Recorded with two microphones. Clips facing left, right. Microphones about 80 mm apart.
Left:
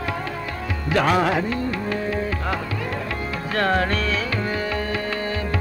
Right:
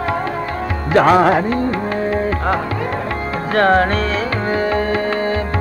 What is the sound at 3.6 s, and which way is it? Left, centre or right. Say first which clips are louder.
Music: right 8 dB; right.